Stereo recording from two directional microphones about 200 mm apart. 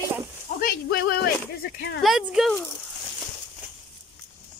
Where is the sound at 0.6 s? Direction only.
50° left (ahead or behind).